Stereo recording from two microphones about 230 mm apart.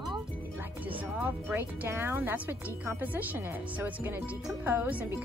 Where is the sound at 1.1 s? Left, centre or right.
Centre.